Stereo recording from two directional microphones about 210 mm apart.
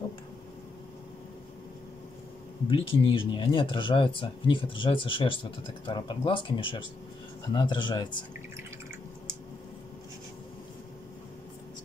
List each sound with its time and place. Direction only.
2.7 s speech: 25° left (ahead or behind)